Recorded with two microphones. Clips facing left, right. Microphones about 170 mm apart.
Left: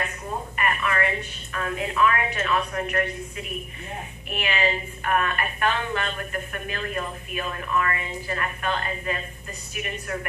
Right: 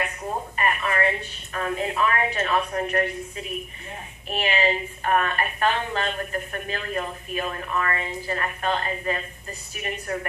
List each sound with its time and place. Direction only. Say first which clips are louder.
0.6 s a woman's voice: right 1 dB; 35° right (ahead or behind)
4.3 s a woman's voice: right 2 dB; 30° right (ahead or behind)